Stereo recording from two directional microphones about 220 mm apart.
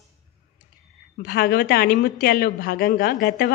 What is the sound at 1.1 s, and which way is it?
A woman's voice, 40° left (ahead or behind).